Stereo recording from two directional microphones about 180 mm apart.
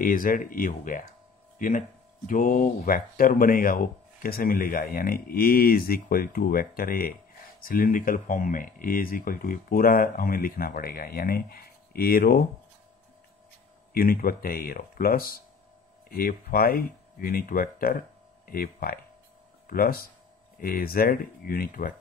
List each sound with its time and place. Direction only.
0.0 s speech: 50° left (ahead or behind)
13.9 s speech: 55° left (ahead or behind)